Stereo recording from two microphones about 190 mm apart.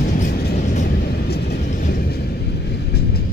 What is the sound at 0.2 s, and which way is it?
Vehicle, 55° left (ahead or behind).